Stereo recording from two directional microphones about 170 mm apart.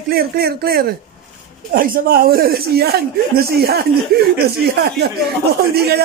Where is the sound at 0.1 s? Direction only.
65° right (ahead or behind).